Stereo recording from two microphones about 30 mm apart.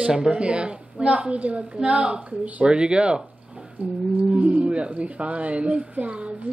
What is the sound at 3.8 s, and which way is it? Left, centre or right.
A woman's voice, right.